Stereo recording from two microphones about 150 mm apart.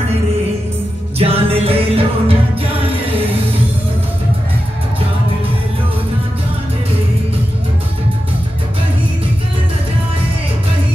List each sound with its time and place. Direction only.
1.1 s music: 40° right (ahead or behind)